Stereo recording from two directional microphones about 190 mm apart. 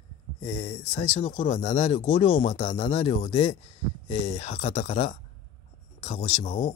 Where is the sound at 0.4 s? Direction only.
30° left (ahead or behind).